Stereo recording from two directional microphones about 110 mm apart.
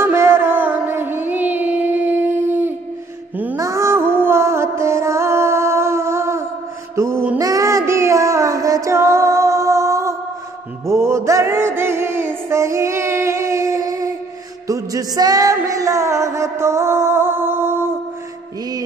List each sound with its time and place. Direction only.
0.0 s music: 20° right (ahead or behind)
7.0 s child singing: 25° right (ahead or behind)
10.9 s music: 25° right (ahead or behind)